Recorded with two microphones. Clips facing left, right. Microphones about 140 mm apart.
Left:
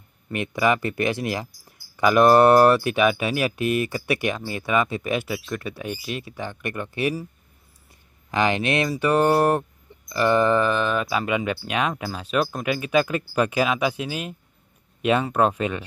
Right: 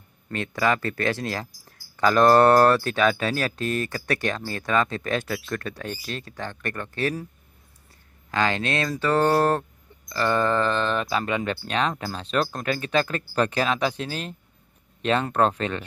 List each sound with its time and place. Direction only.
0.3 s speech: 15° left (ahead or behind)
8.3 s speech: 15° left (ahead or behind)